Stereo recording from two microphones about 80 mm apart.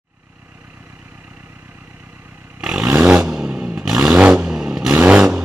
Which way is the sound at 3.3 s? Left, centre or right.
Centre.